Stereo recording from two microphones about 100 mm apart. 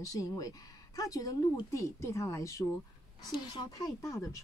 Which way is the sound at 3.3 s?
45° left (ahead or behind).